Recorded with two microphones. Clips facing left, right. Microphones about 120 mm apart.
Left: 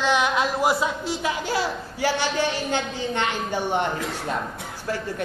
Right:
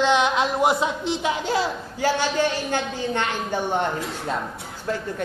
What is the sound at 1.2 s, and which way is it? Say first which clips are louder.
A man's voice: right 1 dB; 5° left (ahead or behind).